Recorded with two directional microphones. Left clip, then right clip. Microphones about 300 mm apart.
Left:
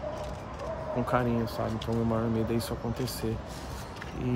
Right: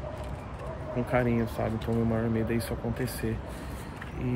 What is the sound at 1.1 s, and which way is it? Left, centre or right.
Speech, centre.